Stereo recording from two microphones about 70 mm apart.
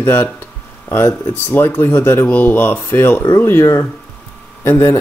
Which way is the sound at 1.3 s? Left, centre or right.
Left.